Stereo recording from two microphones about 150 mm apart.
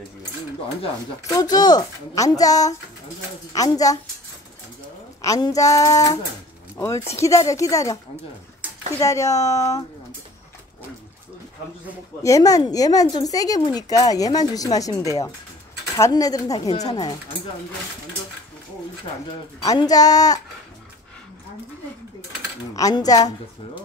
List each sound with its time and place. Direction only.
1.3 s speech: 25° left (ahead or behind)
5.2 s speech: 20° left (ahead or behind)
7.2 s speech: 20° left (ahead or behind)
9.0 s speech: 20° left (ahead or behind)
12.2 s speech: 25° left (ahead or behind)
19.6 s speech: 25° left (ahead or behind)
22.8 s speech: 25° left (ahead or behind)